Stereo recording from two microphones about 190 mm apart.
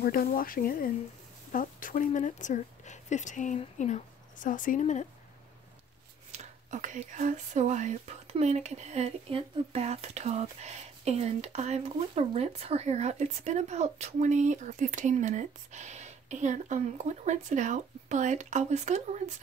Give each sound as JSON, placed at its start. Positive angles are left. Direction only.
{"t": 0.0, "sound": "speech", "side_deg": 50}
{"t": 6.3, "sound": "speech", "side_deg": -40}